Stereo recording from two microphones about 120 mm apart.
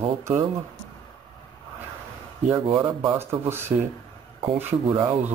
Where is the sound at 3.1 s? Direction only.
20° right (ahead or behind).